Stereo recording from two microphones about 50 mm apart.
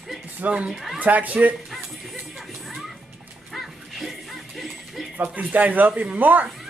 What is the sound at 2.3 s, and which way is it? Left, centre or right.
Music, centre.